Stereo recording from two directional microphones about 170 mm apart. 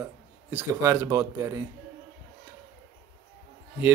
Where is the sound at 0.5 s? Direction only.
15° right (ahead or behind).